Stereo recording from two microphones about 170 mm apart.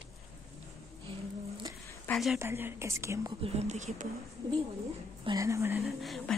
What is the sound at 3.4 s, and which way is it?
Speech, 40° right (ahead or behind).